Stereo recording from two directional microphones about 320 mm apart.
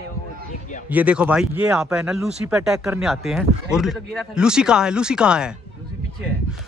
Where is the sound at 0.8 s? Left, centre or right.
Centre.